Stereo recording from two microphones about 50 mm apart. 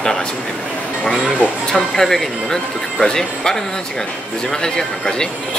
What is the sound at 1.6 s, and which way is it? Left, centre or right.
Speech, centre.